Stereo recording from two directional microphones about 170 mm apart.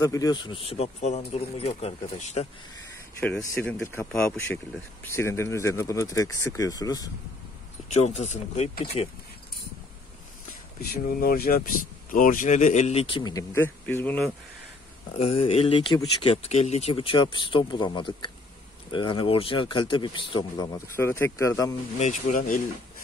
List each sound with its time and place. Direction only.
0.0 s speech: 20° left (ahead or behind); by 2.4 s 40° left (ahead or behind)
3.6 s speech: 15° left (ahead or behind)
7.9 s speech: 40° left (ahead or behind)
10.8 s speech: 60° left (ahead or behind); by 14.3 s 10° left (ahead or behind)
15.1 s speech: 35° left (ahead or behind); by 21.7 s 20° left (ahead or behind)
21.9 s speech: 45° left (ahead or behind)